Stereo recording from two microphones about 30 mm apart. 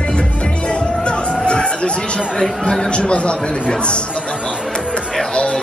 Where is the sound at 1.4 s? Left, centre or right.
Left.